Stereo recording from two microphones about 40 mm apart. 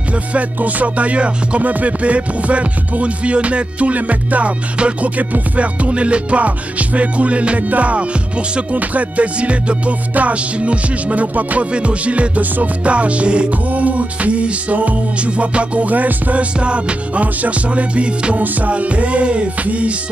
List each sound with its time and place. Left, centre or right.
0.3 s music: right
1.6 s music: right
16.5 s music: right